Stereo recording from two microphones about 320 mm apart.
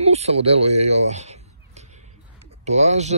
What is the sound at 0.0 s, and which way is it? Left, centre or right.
A man's voice, centre.